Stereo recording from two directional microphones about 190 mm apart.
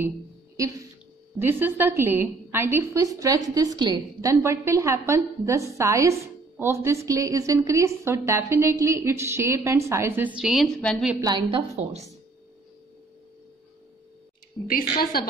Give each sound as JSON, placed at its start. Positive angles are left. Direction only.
{"t": 1.4, "sound": "a woman's voice", "side_deg": -10}
{"t": 11.1, "sound": "a woman's voice", "side_deg": -20}
{"t": 14.7, "sound": "a woman's voice", "side_deg": 50}